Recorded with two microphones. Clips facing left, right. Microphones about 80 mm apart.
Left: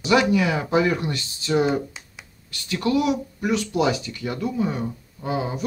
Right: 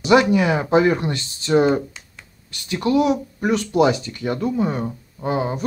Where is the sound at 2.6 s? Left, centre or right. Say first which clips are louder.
Right 3 dB; right.